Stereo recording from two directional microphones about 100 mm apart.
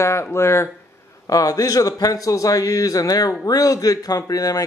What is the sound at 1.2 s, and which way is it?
Speech, 35° left (ahead or behind).